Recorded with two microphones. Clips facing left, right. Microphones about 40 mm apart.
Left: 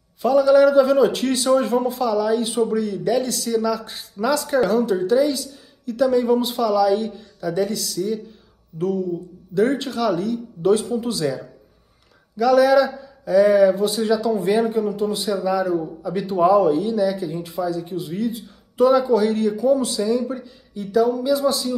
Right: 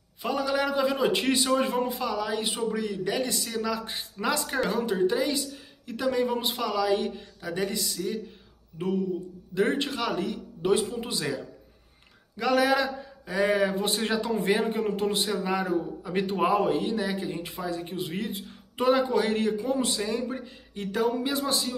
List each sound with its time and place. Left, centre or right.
0.2 s a man's voice: centre; by 21.6 s right